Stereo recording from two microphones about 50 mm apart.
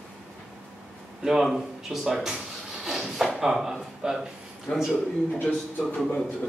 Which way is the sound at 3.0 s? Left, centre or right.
Centre.